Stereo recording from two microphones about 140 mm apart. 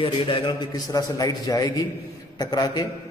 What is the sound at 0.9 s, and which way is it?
A man's voice, 25° left (ahead or behind).